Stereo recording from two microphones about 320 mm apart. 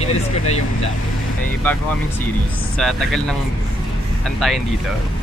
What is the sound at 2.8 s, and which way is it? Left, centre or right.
Speech, centre.